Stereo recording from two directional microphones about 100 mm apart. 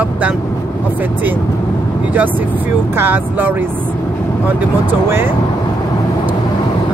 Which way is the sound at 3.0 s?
20° right (ahead or behind).